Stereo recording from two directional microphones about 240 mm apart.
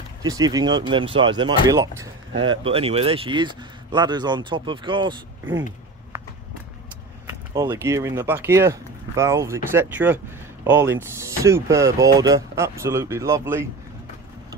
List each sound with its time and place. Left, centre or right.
0.2 s speech: centre
5.4 s speech: centre
7.2 s speech: centre